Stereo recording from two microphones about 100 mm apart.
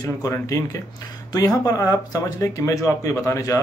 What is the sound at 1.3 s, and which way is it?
Speech, 35° left (ahead or behind).